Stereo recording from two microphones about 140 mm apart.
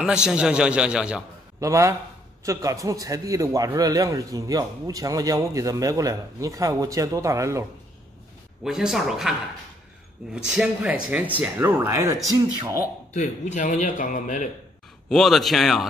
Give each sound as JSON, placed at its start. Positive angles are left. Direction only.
{"t": 0.0, "sound": "speech", "side_deg": -5}
{"t": 1.6, "sound": "a man's voice", "side_deg": -20}
{"t": 8.6, "sound": "speech", "side_deg": -5}
{"t": 10.3, "sound": "speech", "side_deg": -5}
{"t": 13.1, "sound": "speech", "side_deg": 60}
{"t": 15.0, "sound": "speech", "side_deg": 0}